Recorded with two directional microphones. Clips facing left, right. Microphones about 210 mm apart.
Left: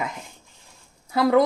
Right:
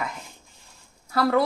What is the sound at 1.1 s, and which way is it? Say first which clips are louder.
Speech: left 3 dB; 15° left (ahead or behind).